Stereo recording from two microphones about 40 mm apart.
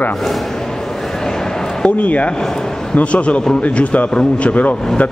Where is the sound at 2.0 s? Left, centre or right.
Left.